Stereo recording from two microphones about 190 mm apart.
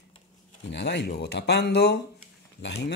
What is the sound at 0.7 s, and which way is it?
Speech, 65° left (ahead or behind).